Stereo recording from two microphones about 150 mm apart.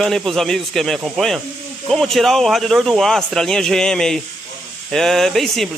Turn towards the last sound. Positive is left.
turn(degrees=0)  # may be behind; listen again after turning